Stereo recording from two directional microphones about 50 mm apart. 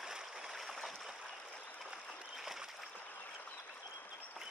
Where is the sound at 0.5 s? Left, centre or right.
Centre.